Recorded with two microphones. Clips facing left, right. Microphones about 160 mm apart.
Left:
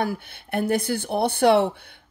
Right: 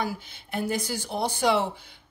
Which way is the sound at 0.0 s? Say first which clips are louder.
Left 4 dB; 60° left (ahead or behind).